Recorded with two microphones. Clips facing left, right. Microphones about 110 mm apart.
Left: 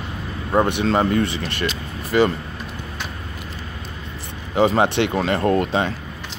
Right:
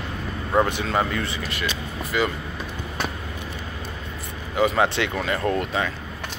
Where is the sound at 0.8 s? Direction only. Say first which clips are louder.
Left 6 dB; 30° left (ahead or behind).